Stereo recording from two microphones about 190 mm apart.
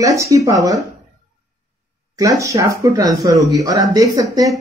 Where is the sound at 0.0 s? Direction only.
15° right (ahead or behind).